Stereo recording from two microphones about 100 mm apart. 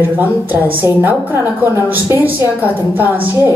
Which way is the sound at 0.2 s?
20° right (ahead or behind).